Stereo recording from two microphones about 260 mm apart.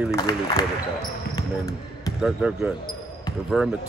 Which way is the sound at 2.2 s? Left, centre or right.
Centre.